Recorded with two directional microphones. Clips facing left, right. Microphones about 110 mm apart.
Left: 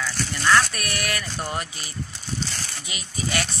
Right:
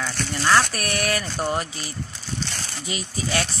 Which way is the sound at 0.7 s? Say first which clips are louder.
Right 4 dB; 30° right (ahead or behind).